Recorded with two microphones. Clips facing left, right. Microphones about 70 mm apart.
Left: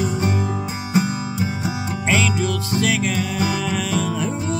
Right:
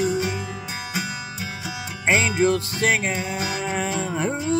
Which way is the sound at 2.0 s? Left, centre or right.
Right.